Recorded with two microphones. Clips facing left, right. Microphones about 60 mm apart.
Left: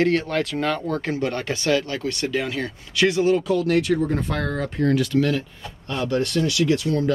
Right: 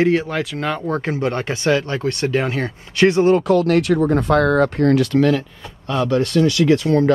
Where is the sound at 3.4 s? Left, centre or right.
Right.